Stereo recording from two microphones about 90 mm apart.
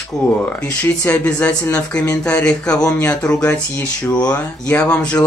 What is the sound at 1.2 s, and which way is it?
Speech, 20° left (ahead or behind).